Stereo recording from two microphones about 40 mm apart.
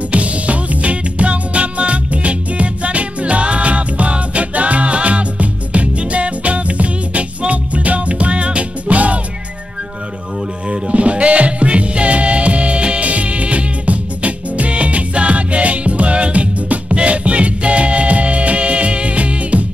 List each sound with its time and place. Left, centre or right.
0.1 s music: right
10.7 s music: right